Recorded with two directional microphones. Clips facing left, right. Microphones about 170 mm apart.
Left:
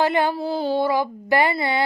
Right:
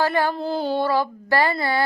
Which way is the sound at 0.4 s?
5° left (ahead or behind).